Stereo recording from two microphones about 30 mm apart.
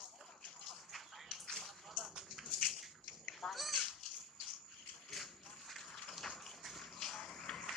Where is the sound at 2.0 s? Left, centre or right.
Right.